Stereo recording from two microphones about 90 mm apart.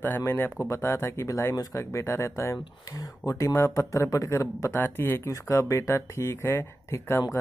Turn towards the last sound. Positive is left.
turn(degrees=30)  # may be behind; listen again after turning